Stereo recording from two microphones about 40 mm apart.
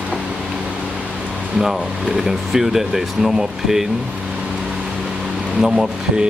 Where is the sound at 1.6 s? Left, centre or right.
Centre.